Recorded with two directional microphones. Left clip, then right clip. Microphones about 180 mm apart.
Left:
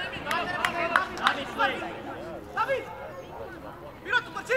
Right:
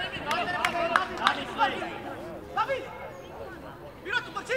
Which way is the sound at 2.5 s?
30° left (ahead or behind).